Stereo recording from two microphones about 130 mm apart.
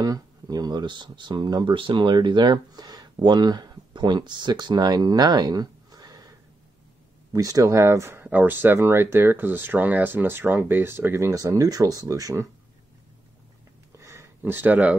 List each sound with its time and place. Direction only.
0.0 s speech: 30° right (ahead or behind)
7.3 s speech: 25° right (ahead or behind)
13.9 s a sound: 20° right (ahead or behind)